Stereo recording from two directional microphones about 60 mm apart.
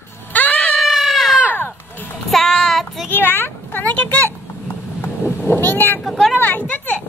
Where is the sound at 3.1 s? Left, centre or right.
Left.